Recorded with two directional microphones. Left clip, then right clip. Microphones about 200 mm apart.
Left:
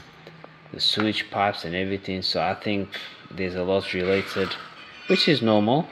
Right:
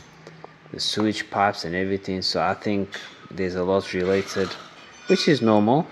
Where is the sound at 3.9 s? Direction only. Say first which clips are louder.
Right 1 dB; centre (ahead or behind).